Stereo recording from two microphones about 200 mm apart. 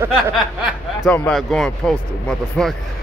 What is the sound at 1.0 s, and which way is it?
Speech, 5° left (ahead or behind).